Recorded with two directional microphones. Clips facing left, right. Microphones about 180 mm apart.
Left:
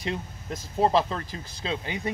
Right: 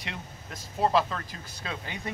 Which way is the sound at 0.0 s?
30° left (ahead or behind).